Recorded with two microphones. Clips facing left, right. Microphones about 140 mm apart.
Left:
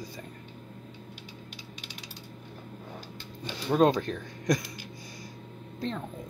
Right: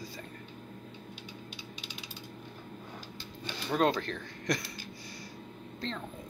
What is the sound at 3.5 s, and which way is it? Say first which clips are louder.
Speech: left 5 dB; 20° left (ahead or behind).